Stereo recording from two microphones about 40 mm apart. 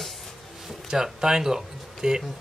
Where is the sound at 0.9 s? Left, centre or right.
Centre.